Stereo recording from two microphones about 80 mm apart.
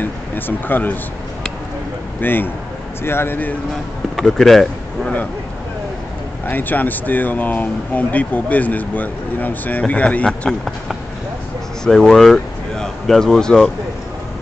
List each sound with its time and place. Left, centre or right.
0.0 s speech: left
2.1 s a man's voice: left
4.2 s speech: centre
6.4 s speech: left
11.8 s speech: centre